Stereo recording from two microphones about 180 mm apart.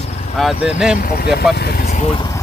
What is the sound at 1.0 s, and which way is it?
Speech, 55° left (ahead or behind).